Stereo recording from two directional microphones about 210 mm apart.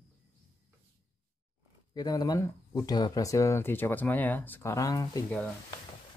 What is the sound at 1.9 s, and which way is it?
Speech, 20° left (ahead or behind).